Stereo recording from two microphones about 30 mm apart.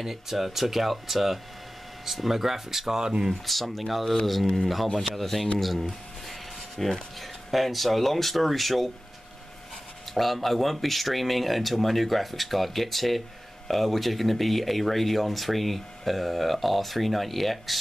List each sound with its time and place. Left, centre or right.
0.0 s speech: centre
3.0 s speech: right
3.4 s speech: centre
10.1 s speech: centre